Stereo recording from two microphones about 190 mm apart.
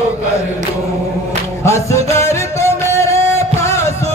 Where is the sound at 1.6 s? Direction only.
15° left (ahead or behind).